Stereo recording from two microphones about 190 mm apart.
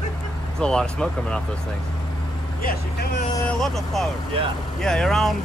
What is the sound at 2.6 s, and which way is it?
Speech, 55° left (ahead or behind).